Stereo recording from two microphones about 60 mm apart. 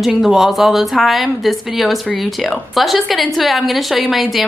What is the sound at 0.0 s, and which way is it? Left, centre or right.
A woman's voice, centre.